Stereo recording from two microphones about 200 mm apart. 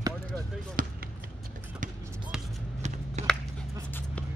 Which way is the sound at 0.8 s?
45° right (ahead or behind).